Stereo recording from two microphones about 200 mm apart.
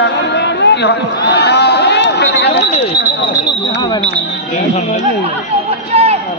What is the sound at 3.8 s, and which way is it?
Speech, 20° left (ahead or behind).